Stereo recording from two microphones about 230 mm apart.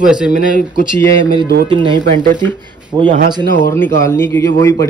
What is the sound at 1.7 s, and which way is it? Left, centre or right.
Speech, right.